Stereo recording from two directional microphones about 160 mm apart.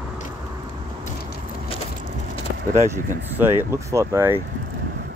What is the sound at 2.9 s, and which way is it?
Speech, 15° right (ahead or behind).